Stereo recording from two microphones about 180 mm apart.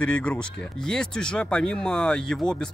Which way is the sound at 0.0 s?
5° left (ahead or behind).